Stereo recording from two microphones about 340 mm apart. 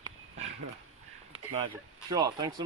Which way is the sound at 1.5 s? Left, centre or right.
Centre.